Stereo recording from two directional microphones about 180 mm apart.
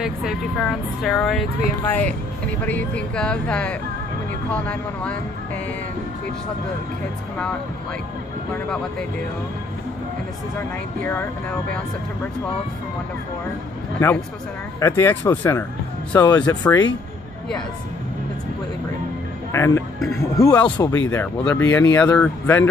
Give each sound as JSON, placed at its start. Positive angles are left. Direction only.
{"t": 0.0, "sound": "speech", "side_deg": 0}
{"t": 13.9, "sound": "speech", "side_deg": 10}
{"t": 16.4, "sound": "speech", "side_deg": 5}
{"t": 19.5, "sound": "speech", "side_deg": 15}